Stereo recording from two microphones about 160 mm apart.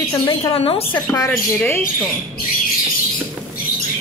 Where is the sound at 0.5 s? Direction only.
35° left (ahead or behind).